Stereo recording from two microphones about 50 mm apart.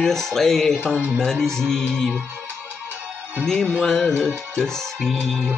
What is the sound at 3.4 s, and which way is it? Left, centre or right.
Speech, centre.